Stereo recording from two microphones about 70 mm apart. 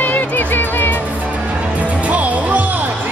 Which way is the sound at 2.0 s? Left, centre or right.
Right.